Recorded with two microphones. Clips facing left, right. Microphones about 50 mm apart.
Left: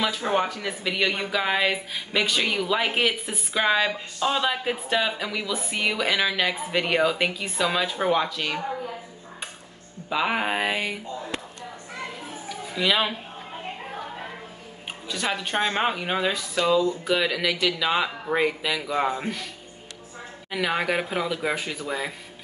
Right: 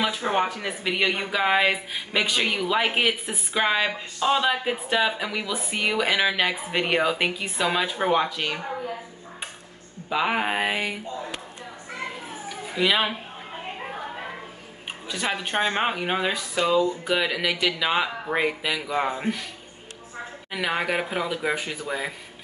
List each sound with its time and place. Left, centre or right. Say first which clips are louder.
0.0 s speech: even; centre
10.0 s speech: right 1 dB; centre
12.4 s cat: right 1 dB; centre
15.0 s speech: even; centre
20.5 s speech: left 1 dB; centre